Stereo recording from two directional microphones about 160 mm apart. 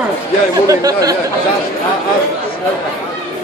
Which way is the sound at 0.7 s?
20° right (ahead or behind).